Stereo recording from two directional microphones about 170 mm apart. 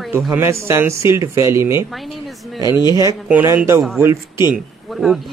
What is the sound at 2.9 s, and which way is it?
Speech, 20° right (ahead or behind).